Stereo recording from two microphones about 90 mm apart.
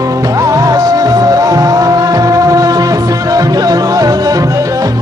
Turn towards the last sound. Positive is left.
turn(degrees=-40)  # may be behind; listen again after turning